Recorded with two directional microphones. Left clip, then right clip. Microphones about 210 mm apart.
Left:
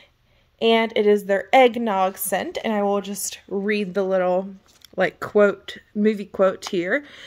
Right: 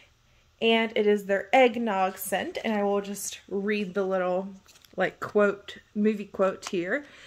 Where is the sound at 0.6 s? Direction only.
40° left (ahead or behind).